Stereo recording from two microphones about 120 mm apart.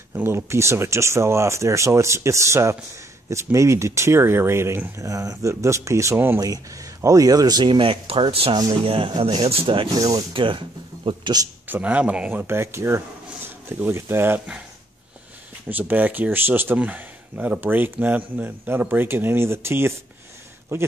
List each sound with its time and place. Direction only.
0.1 s speech: 20° right (ahead or behind); by 9.8 s 50° right (ahead or behind)
9.9 s speech: 30° right (ahead or behind)
10.3 s speech: 45° right (ahead or behind)
11.6 s speech: 15° right (ahead or behind)
15.7 s speech: 15° right (ahead or behind)